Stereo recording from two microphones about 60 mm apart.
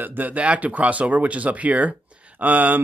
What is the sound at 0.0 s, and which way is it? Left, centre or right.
Speech, right.